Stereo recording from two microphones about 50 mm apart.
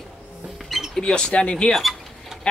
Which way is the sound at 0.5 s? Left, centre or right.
Centre.